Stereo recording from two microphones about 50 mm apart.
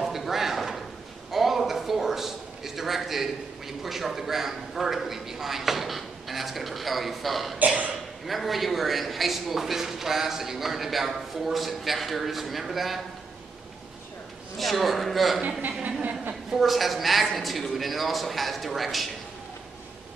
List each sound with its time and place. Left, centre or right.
0.0 s a sound: centre
1.3 s a man's voice: centre
7.5 s cough: right
8.3 s speech: centre
14.6 s speech: centre
15.8 s a sound: right
16.4 s speech: centre